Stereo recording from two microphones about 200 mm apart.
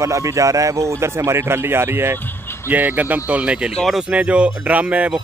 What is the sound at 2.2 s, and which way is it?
Vehicle, 10° left (ahead or behind).